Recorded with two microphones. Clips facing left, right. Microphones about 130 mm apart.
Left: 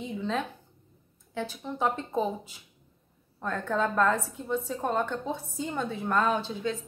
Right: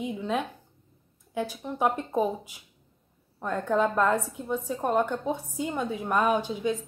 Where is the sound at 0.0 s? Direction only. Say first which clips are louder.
Right 2 dB; 10° right (ahead or behind).